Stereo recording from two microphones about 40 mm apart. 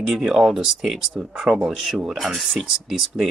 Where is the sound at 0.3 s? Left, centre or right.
Centre.